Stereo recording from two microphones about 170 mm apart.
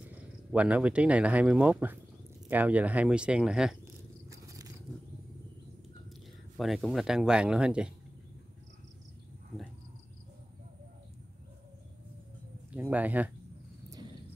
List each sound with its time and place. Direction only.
0.5 s speech: 10° right (ahead or behind)
3.8 s cricket: 20° right (ahead or behind)
6.5 s speech: centre (ahead or behind)
12.7 s speech: 10° right (ahead or behind)